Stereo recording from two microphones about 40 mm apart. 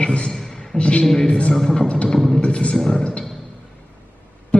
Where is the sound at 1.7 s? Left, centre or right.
Left.